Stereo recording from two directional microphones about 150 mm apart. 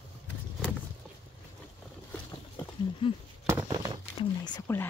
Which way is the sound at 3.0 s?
35° left (ahead or behind).